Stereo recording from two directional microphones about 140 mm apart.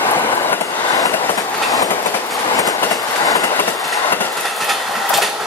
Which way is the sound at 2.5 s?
25° left (ahead or behind).